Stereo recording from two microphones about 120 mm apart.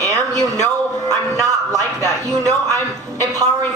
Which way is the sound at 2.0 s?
25° right (ahead or behind).